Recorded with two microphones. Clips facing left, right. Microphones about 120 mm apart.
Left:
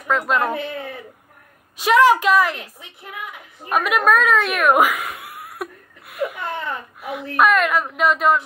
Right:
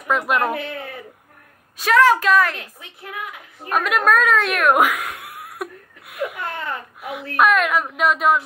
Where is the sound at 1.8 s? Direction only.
10° left (ahead or behind).